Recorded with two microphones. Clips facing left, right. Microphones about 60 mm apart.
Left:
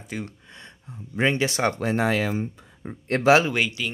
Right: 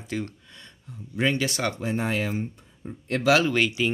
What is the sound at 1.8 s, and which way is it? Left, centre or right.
Speech, left.